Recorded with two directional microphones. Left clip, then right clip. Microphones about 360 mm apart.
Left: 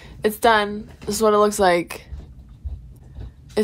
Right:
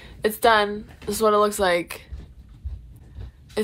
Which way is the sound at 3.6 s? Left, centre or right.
Centre.